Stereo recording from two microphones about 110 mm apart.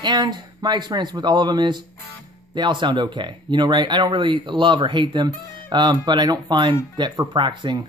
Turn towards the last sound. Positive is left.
turn(degrees=-45)  # may be behind; listen again after turning